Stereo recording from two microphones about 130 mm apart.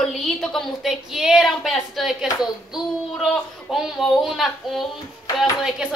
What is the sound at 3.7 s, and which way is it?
A woman's voice, 5° right (ahead or behind).